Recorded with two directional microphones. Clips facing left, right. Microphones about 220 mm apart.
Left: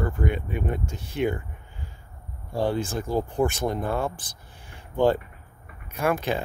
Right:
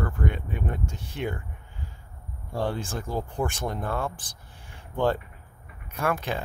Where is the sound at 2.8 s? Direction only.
20° left (ahead or behind).